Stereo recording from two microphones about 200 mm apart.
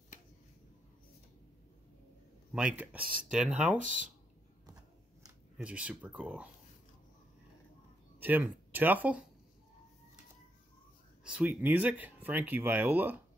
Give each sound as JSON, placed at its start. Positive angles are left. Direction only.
{"t": 2.5, "sound": "speech", "side_deg": -5}
{"t": 3.8, "sound": "speech", "side_deg": -40}
{"t": 5.6, "sound": "speech", "side_deg": -5}
{"t": 8.2, "sound": "speech", "side_deg": -10}
{"t": 11.2, "sound": "speech", "side_deg": -5}